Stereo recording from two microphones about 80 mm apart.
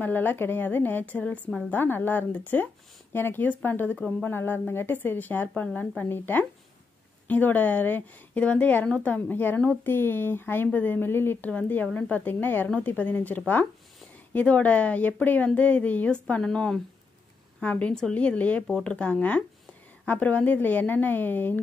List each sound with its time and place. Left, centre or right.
0.0 s a woman's voice: left